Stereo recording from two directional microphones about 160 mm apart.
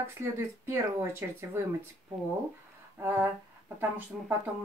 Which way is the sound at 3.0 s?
15° right (ahead or behind).